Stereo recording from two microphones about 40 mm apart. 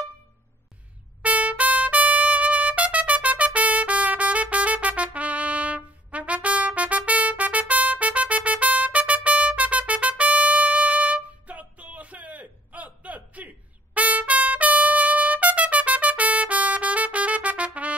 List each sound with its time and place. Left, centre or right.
1.2 s trumpet: right